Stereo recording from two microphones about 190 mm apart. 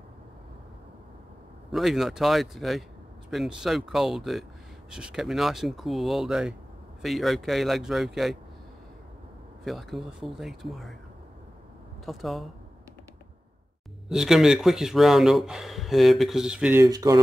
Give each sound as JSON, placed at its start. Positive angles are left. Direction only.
{"t": 1.7, "sound": "speech", "side_deg": 0}
{"t": 9.7, "sound": "speech", "side_deg": 0}
{"t": 12.1, "sound": "speech", "side_deg": 0}
{"t": 14.0, "sound": "speech", "side_deg": 0}
{"t": 16.8, "sound": "speech", "side_deg": -20}